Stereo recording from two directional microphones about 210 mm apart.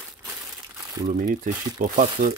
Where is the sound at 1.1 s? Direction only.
40° right (ahead or behind).